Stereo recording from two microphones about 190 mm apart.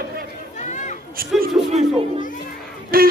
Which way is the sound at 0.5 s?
40° left (ahead or behind).